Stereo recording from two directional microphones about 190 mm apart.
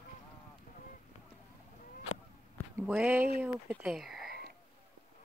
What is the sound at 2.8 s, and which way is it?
Speech, 5° right (ahead or behind).